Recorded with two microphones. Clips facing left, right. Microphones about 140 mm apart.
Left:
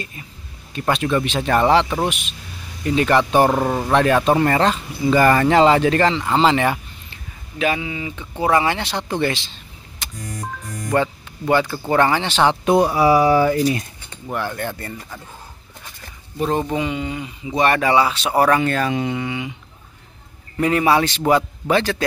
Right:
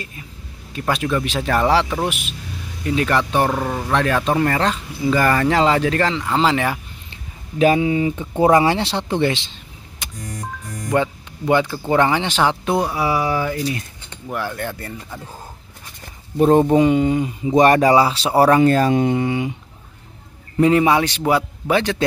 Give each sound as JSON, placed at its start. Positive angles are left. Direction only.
{"t": 0.7, "sound": "speech", "side_deg": -5}
{"t": 3.3, "sound": "speech", "side_deg": 25}
{"t": 3.9, "sound": "speech", "side_deg": 5}
{"t": 7.5, "sound": "speech", "side_deg": -40}
{"t": 8.5, "sound": "speech", "side_deg": -30}
{"t": 12.6, "sound": "a sound", "side_deg": 25}
{"t": 14.2, "sound": "speech", "side_deg": -5}
{"t": 16.3, "sound": "speech", "side_deg": -45}
{"t": 20.5, "sound": "a man's voice", "side_deg": -20}